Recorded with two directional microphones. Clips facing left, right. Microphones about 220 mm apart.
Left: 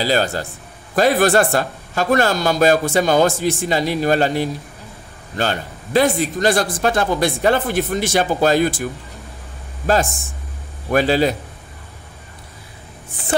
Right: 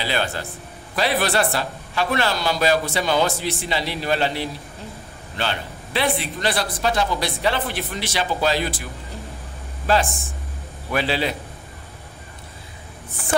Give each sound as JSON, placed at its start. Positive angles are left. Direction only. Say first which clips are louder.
{"t": 0.0, "sound": "a man's voice", "louder": "left 6 dB", "side_deg": 40}
{"t": 9.9, "sound": "a man's voice", "louder": "left 3 dB", "side_deg": 45}